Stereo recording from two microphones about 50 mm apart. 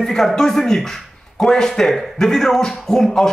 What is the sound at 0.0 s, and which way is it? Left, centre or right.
Speech, centre.